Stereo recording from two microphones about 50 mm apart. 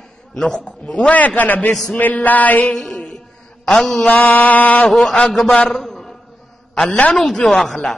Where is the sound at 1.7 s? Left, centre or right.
Centre.